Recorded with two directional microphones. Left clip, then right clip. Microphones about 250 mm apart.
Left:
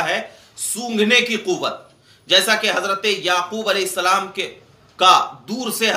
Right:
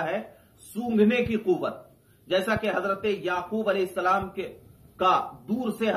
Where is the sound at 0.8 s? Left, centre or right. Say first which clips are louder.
Left 7 dB; centre.